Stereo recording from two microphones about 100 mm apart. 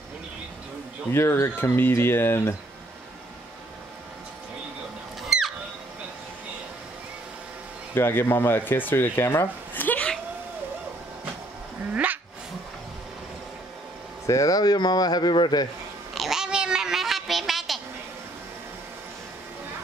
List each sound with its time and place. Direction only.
1.1 s speech: 25° left (ahead or behind)
7.9 s speech: 25° left (ahead or behind)
11.9 s dog: 15° right (ahead or behind)
14.2 s speech: 35° left (ahead or behind); by 15.7 s 50° left (ahead or behind)
16.2 s a sound: 5° right (ahead or behind)